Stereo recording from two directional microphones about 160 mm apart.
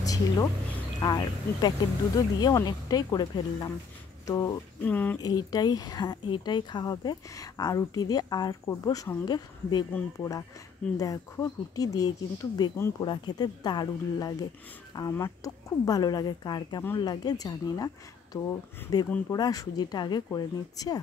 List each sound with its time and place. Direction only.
0.0 s a sound: 20° left (ahead or behind)
1.0 s speech: 25° left (ahead or behind)
4.8 s speech: 10° left (ahead or behind)
5.2 s speech: 25° left (ahead or behind)